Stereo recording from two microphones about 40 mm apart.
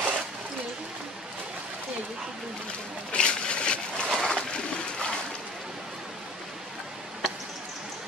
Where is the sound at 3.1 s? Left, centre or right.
Left.